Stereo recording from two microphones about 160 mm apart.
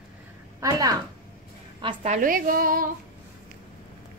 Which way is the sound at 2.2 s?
60° right (ahead or behind).